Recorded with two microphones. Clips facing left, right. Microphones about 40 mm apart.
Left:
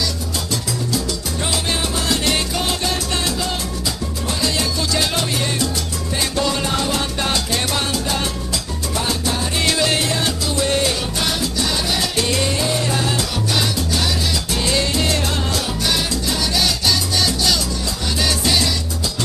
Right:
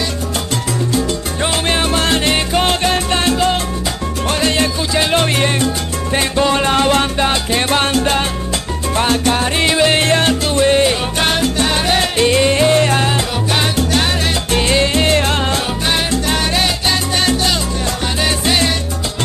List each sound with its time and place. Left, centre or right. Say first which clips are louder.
0.9 s salsa music: right 5 dB; right
4.4 s music: right 6 dB; right
5.2 s salsa music: right 6 dB; right
6.1 s music: right 6 dB; right
7.2 s music: right 5 dB; right
8.9 s salsa music: right 7 dB; right
9.6 s music: right 4 dB; right
10.0 s music: right 7 dB; right
10.7 s music: right 6 dB; right
11.1 s music: right 6 dB; right
15.9 s salsa music: right 6 dB; right
18.2 s music: right 3 dB; right